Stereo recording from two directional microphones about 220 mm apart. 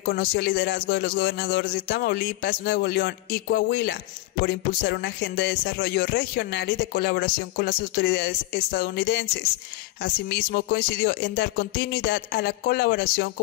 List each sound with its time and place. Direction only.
0.0 s speech: 45° left (ahead or behind)